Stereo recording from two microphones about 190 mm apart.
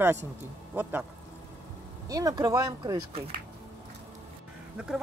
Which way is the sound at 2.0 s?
20° right (ahead or behind).